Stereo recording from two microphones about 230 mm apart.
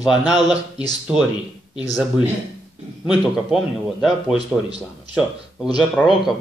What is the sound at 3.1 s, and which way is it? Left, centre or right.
Speech, centre.